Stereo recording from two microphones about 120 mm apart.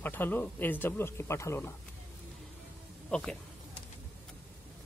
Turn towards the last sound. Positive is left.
turn(degrees=10)  # may be behind; listen again after turning